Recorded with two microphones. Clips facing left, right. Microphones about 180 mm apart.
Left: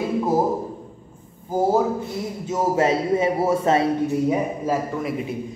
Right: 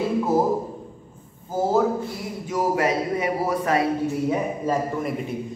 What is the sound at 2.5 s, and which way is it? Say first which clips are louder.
Speech: left 2 dB; 25° left (ahead or behind).